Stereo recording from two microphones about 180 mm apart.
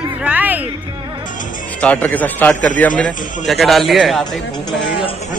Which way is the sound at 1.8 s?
10° left (ahead or behind).